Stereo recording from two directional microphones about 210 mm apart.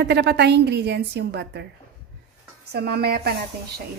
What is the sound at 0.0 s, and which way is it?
A woman's voice, 50° right (ahead or behind).